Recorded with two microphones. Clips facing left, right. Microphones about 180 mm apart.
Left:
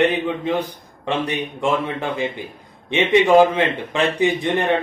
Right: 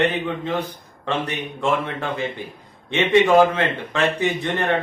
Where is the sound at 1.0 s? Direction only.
15° left (ahead or behind).